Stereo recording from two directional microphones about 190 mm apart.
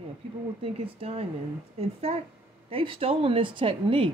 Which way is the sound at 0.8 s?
30° right (ahead or behind).